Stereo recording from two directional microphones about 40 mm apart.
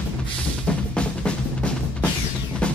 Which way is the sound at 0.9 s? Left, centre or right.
Left.